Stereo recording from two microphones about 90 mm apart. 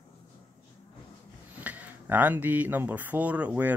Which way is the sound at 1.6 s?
20° right (ahead or behind).